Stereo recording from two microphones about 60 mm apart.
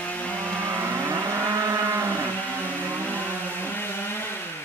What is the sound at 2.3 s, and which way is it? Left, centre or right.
Vehicle, left.